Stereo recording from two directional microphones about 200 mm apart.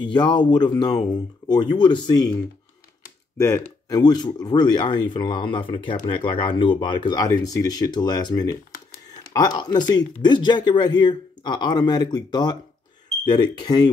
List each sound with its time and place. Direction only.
0.0 s speech: 20° left (ahead or behind)
3.3 s speech: 15° left (ahead or behind)